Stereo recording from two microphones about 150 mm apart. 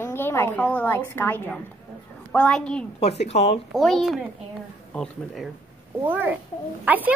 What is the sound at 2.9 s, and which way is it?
Speech, 45° left (ahead or behind).